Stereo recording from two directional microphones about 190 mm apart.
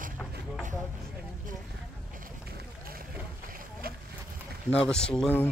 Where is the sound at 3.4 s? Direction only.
45° right (ahead or behind).